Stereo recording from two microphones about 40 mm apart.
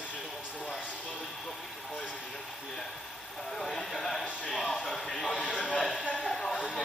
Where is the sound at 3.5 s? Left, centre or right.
Centre.